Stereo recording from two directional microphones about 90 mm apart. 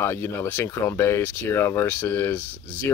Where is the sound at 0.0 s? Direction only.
30° left (ahead or behind).